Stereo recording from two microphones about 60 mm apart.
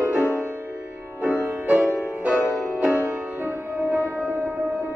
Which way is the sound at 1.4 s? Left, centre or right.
Right.